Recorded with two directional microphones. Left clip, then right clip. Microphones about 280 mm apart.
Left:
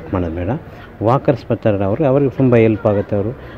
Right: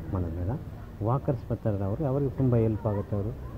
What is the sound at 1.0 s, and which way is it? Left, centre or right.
Speech, left.